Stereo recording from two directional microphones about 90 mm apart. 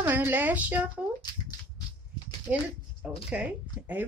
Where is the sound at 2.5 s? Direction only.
15° right (ahead or behind).